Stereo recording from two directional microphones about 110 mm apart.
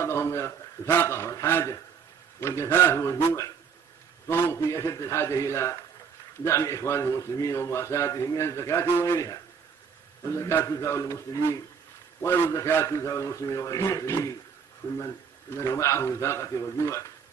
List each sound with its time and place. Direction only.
0.0 s a man's voice: 25° left (ahead or behind)